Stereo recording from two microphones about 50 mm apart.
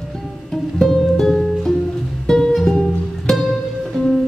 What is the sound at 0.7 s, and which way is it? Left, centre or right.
Music, centre.